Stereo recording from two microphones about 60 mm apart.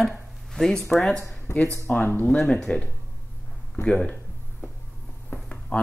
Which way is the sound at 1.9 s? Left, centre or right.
Left.